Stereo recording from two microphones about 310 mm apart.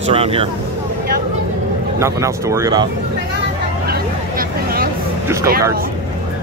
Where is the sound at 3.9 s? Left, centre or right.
Right.